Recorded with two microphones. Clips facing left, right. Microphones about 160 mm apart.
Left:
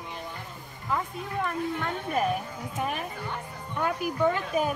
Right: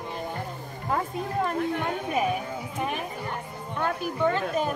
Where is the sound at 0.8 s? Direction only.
40° right (ahead or behind).